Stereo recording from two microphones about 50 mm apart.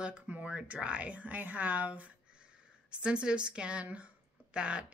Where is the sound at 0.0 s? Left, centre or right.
Right.